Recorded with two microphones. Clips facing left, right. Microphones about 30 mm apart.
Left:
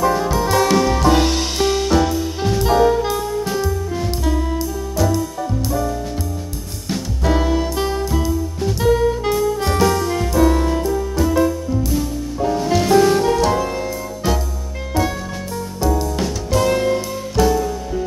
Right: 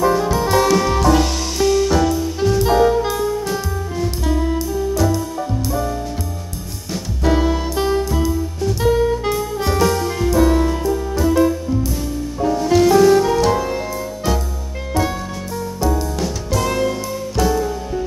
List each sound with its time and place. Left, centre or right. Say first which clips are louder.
0.0 s music: right 1 dB; centre
1.0 s music: left 1 dB; left
1.9 s music: even; centre
2.6 s music: left 1 dB; centre
7.2 s music: right 1 dB; centre
15.0 s music: even; centre
16.8 s music: left 1 dB; centre
17.4 s music: left 2 dB; centre